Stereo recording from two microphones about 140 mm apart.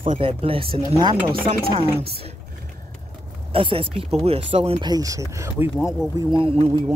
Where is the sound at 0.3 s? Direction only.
40° right (ahead or behind).